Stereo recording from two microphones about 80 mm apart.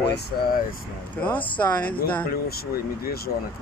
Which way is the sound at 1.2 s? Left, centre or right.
Centre.